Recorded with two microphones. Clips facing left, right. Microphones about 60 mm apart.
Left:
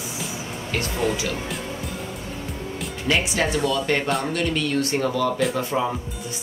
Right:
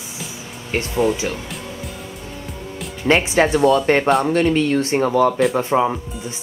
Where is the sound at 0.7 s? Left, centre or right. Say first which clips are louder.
Right 6 dB; right.